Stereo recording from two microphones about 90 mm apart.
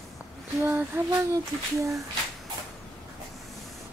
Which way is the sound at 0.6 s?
20° right (ahead or behind).